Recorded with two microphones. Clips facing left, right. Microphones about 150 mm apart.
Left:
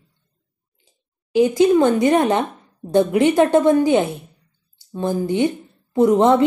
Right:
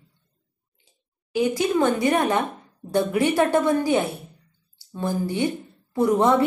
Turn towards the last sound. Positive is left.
turn(degrees=20)  # may be behind; listen again after turning